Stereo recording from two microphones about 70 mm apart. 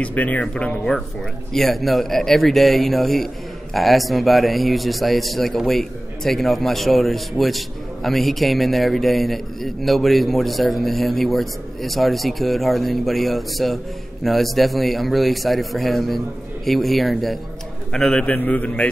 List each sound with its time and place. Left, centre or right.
0.0 s speech: left
1.5 s a man's voice: centre
18.2 s speech: left